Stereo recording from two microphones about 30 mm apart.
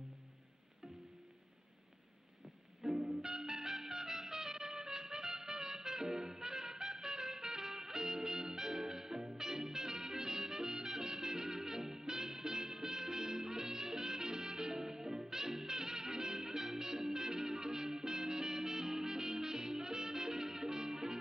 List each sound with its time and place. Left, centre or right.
2.8 s music: centre